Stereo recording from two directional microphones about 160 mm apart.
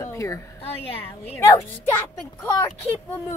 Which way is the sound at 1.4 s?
15° left (ahead or behind).